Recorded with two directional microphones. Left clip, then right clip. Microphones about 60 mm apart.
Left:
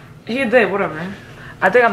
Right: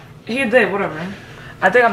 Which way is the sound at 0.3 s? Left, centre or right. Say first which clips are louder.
Even; left.